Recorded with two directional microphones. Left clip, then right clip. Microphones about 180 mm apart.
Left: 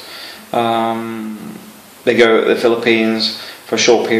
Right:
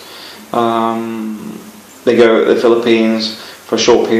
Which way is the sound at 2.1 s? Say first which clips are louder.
Right 2 dB; 15° left (ahead or behind).